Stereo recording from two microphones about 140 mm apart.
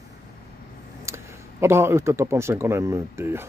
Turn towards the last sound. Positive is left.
turn(degrees=-20)  # may be behind; listen again after turning